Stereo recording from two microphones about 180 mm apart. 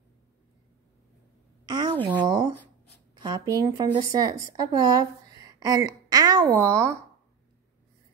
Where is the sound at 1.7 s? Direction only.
20° right (ahead or behind).